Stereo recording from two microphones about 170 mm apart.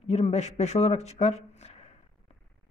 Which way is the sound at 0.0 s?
40° left (ahead or behind).